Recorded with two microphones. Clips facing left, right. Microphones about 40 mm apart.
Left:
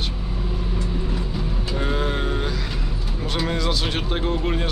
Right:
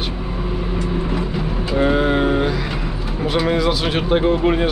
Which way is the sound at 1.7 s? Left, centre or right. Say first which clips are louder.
Right 9 dB; centre.